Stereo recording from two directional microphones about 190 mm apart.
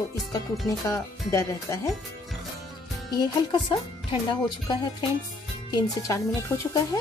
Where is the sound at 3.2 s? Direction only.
25° left (ahead or behind).